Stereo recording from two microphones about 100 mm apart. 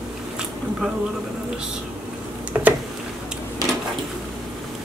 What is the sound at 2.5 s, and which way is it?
Tick-tock, 20° right (ahead or behind).